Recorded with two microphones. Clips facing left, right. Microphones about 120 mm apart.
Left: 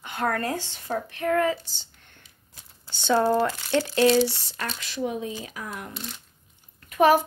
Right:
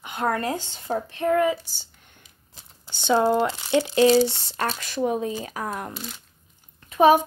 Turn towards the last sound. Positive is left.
turn(degrees=-20)  # may be behind; listen again after turning